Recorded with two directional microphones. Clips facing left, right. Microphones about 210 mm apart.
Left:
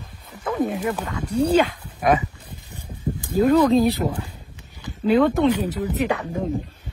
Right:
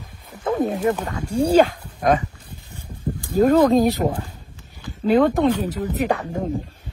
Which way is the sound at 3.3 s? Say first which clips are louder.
Right 1 dB; 45° right (ahead or behind).